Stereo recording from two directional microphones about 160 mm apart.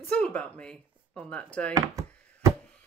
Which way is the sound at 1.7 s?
20° right (ahead or behind).